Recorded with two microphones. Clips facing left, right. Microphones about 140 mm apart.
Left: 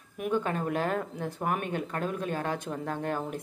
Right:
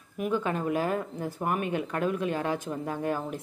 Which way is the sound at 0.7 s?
5° right (ahead or behind).